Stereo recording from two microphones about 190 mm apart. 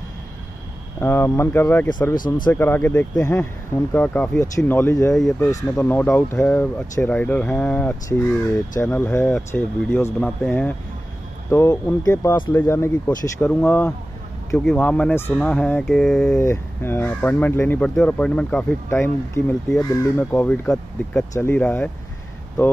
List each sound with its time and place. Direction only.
0.9 s speech: 15° left (ahead or behind)
1.9 s speech: 20° left (ahead or behind)
2.5 s speech: 10° left (ahead or behind)
5.1 s speech: centre (ahead or behind)
16.3 s speech: 15° left (ahead or behind)